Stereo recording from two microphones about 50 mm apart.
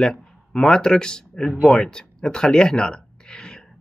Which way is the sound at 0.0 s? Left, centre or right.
Centre.